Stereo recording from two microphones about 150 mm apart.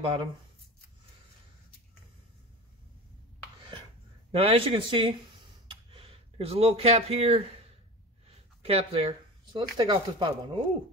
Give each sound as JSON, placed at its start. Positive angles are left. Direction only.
{"t": 0.0, "sound": "speech", "side_deg": -30}
{"t": 4.3, "sound": "speech", "side_deg": -40}
{"t": 5.7, "sound": "a sound", "side_deg": -35}
{"t": 8.3, "sound": "speech", "side_deg": -40}